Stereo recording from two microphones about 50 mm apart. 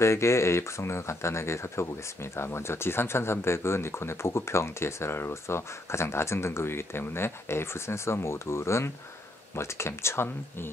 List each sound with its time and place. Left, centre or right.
0.0 s speech: left